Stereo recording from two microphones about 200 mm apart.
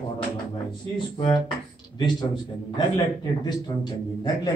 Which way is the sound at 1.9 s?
20° left (ahead or behind).